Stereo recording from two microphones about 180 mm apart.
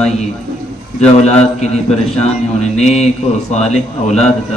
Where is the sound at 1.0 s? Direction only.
35° left (ahead or behind).